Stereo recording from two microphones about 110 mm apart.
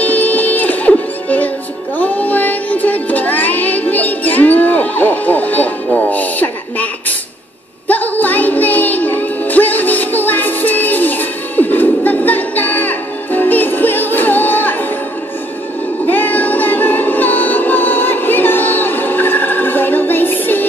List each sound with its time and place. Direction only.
0.0 s music: 15° left (ahead or behind)
16.1 s music: 15° left (ahead or behind)